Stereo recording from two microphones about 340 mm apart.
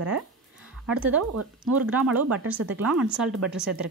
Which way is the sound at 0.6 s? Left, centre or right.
Centre.